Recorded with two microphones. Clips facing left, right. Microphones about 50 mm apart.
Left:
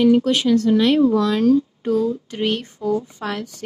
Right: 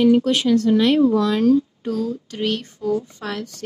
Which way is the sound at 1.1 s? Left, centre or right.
Left.